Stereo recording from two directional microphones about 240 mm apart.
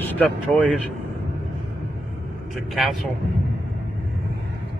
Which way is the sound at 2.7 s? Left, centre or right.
Centre.